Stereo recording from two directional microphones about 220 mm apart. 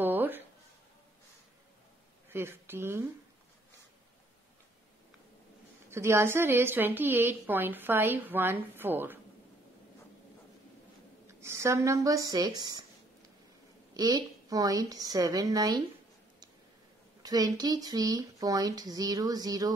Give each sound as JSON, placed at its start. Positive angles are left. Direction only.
{"t": 0.0, "sound": "a sound", "side_deg": -10}
{"t": 2.2, "sound": "speech", "side_deg": -10}
{"t": 5.9, "sound": "a woman's voice", "side_deg": -10}
{"t": 11.2, "sound": "speech", "side_deg": -10}
{"t": 13.9, "sound": "a woman's voice", "side_deg": -15}
{"t": 17.2, "sound": "a woman's voice", "side_deg": -15}